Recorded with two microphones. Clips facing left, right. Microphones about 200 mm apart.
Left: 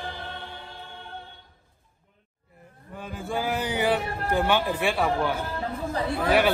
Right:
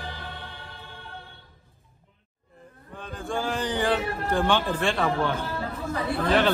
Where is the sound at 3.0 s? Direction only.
5° left (ahead or behind).